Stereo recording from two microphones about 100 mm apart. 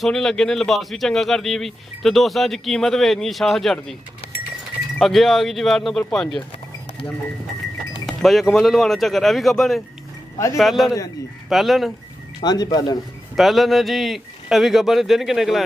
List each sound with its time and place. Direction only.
0.0 s speech: 5° left (ahead or behind)
4.9 s speech: centre (ahead or behind)
8.1 s speech: centre (ahead or behind)
12.4 s speech: 40° left (ahead or behind)
13.4 s speech: centre (ahead or behind)